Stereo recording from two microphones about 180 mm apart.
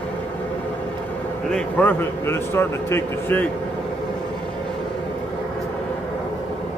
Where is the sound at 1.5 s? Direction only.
5° left (ahead or behind).